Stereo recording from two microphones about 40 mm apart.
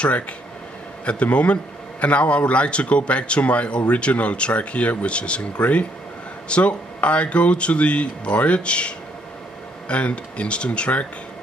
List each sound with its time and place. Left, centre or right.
1.0 s a man's voice: left